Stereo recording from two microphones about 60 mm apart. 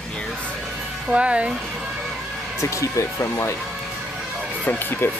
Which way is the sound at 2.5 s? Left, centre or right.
Left.